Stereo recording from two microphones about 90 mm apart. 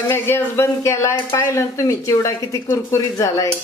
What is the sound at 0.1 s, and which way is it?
Speech, 30° left (ahead or behind).